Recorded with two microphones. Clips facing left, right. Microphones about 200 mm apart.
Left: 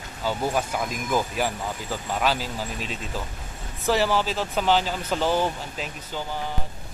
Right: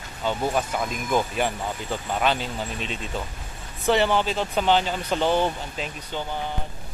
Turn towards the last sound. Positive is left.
turn(degrees=5)  # may be behind; listen again after turning